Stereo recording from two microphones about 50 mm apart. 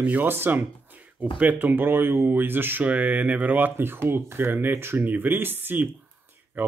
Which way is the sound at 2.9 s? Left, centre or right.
Right.